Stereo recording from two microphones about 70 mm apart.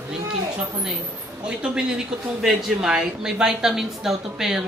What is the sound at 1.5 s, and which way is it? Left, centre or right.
A woman's voice, centre.